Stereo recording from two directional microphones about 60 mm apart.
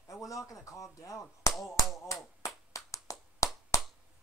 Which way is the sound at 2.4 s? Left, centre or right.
Left.